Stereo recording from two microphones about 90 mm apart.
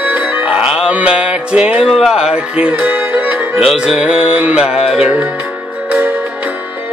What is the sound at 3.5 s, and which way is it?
Music, 5° right (ahead or behind).